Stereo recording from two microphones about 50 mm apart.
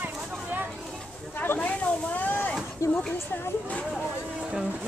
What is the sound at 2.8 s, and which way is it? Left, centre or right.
Speech, left.